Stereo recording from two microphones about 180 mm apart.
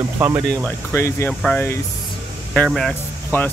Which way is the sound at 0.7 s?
15° left (ahead or behind).